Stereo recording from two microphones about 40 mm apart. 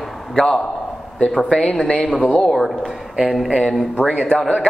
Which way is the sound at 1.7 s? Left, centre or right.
Left.